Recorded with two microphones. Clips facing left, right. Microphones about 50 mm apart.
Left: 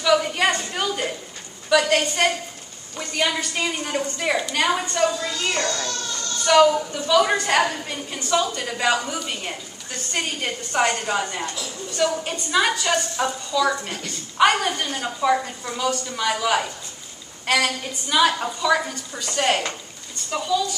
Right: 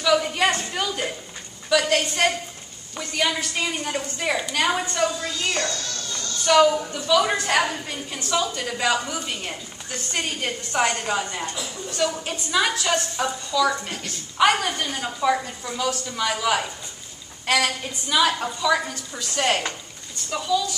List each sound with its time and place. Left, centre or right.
0.0 s a sound: centre
1.7 s a woman's voice: centre
11.4 s a woman's voice: centre
11.9 s a woman's voice: centre